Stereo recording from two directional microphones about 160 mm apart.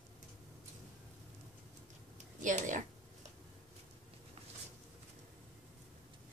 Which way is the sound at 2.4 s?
50° right (ahead or behind).